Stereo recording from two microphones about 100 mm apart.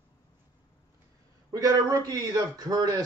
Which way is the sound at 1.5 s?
40° right (ahead or behind).